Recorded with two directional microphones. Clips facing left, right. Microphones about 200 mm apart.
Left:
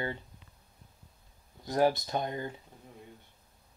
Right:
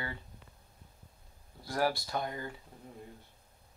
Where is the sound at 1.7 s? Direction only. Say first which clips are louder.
Left 5 dB; 20° left (ahead or behind).